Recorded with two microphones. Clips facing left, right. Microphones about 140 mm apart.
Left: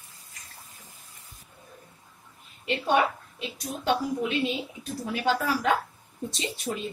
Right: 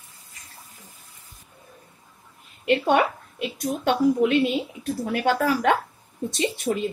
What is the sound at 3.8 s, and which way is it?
A woman's voice, 65° right (ahead or behind).